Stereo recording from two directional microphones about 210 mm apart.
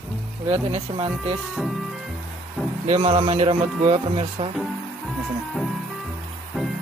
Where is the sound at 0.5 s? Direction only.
30° right (ahead or behind).